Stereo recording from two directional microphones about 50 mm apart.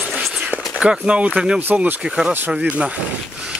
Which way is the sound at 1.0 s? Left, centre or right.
Right.